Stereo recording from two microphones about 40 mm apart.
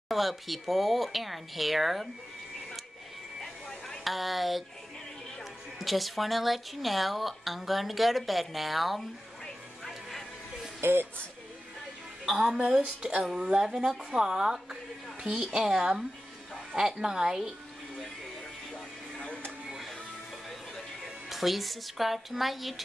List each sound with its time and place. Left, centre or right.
0.1 s a woman's voice: centre
4.0 s a woman's voice: centre
10.8 s speech: right
12.3 s a woman's voice: centre
19.1 s music: left
20.4 s music: centre